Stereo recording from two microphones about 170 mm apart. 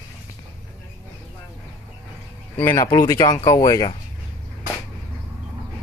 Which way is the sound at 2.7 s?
20° left (ahead or behind).